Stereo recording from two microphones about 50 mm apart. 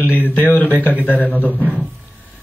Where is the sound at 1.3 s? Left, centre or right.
Right.